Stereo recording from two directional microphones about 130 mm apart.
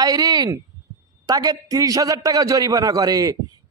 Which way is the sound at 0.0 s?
30° right (ahead or behind).